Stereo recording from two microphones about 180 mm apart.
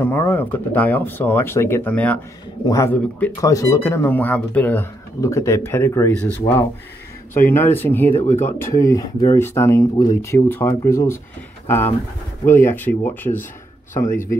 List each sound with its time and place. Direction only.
0.0 s speech: 10° left (ahead or behind)